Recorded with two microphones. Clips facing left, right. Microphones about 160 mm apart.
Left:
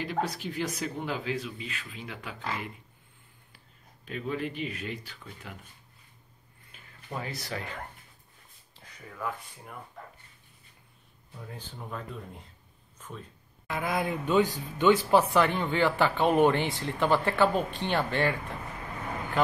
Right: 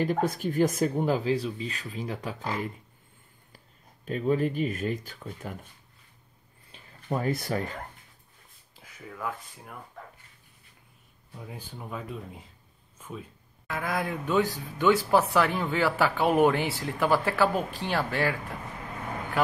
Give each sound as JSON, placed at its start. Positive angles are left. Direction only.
{"t": 0.0, "sound": "speech", "side_deg": -45}
{"t": 6.7, "sound": "a sound", "side_deg": -30}
{"t": 7.1, "sound": "speech", "side_deg": -50}
{"t": 8.7, "sound": "speech", "side_deg": -5}
{"t": 11.3, "sound": "speech", "side_deg": -10}
{"t": 19.4, "sound": "a man's voice", "side_deg": -5}